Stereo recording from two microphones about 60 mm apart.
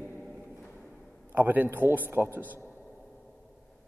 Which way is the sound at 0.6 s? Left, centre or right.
Centre.